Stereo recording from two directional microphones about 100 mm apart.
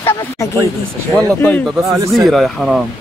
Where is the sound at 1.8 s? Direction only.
30° right (ahead or behind).